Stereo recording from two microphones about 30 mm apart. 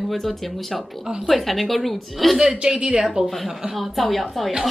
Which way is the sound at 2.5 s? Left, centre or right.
Right.